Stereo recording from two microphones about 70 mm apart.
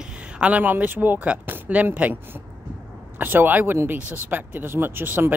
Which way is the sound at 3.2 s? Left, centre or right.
Right.